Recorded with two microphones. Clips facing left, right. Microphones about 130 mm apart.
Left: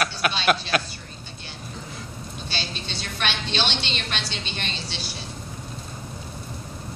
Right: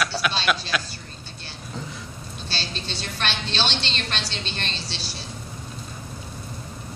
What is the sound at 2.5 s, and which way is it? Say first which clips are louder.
A woman's voice: right 1 dB; 15° left (ahead or behind).